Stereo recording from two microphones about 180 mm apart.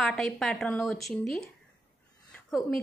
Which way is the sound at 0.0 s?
Centre (ahead or behind).